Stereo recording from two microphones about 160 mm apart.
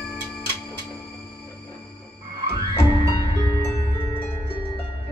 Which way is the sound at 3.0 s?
35° left (ahead or behind).